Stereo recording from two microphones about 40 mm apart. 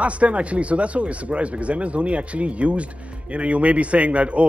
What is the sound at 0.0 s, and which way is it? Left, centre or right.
A man's voice, right.